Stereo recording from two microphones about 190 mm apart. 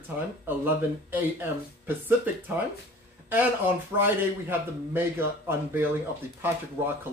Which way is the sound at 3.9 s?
10° right (ahead or behind).